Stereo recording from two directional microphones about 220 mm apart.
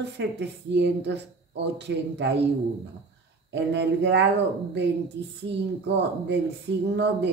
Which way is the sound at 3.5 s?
50° right (ahead or behind).